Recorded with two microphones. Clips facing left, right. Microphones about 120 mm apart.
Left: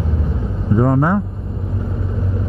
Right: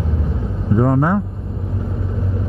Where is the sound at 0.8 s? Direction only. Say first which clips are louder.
Left 1 dB; 20° left (ahead or behind).